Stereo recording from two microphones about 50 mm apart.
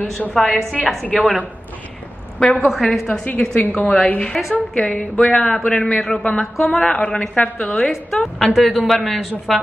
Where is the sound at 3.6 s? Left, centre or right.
Left.